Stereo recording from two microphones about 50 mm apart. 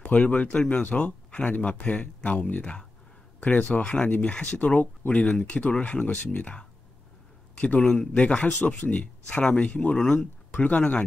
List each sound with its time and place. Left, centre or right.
0.0 s a man's voice: left
10.8 s speech: centre